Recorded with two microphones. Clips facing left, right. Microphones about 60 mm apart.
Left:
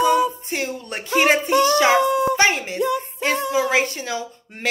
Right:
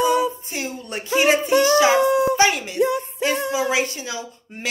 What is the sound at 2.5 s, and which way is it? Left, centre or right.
A woman's voice, left.